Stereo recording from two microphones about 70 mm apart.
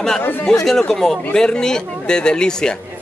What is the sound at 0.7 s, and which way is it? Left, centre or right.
A man's voice, centre.